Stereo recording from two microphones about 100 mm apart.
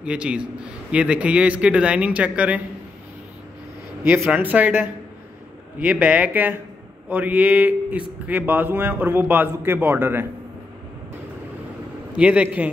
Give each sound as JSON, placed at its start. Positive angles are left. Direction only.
{"t": 0.0, "sound": "speech", "side_deg": -10}
{"t": 4.0, "sound": "speech", "side_deg": -20}
{"t": 12.2, "sound": "speech", "side_deg": -15}